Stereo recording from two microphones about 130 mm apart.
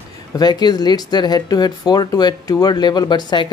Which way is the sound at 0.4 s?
30° left (ahead or behind).